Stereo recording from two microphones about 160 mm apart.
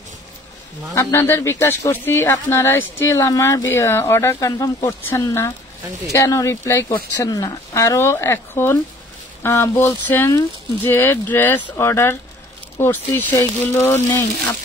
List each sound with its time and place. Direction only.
0.9 s speech: 15° left (ahead or behind)